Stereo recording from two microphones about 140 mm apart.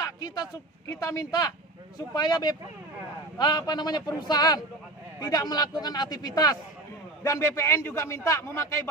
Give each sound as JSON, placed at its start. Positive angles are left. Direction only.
{"t": 0.0, "sound": "a man's voice", "side_deg": 30}